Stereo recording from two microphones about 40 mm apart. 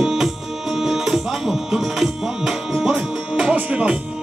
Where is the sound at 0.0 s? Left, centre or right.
Centre.